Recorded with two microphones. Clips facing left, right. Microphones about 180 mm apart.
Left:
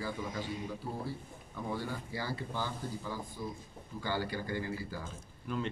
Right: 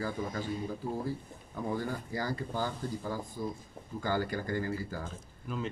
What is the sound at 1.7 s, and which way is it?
Speech, 45° right (ahead or behind).